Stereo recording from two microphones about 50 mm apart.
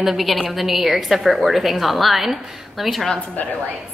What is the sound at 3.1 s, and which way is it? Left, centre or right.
Speech, left.